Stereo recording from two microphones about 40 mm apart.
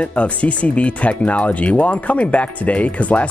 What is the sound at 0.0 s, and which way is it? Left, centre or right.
Speech, left.